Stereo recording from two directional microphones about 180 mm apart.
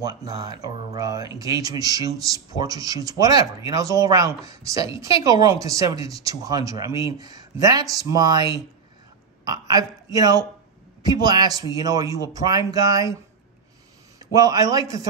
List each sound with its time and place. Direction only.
0.0 s a woman's voice: 20° right (ahead or behind)
14.3 s speech: 20° right (ahead or behind)